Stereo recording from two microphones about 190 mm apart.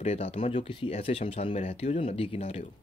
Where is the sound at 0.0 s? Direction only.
35° left (ahead or behind).